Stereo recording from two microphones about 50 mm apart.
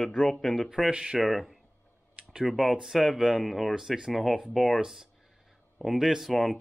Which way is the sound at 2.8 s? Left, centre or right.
Centre.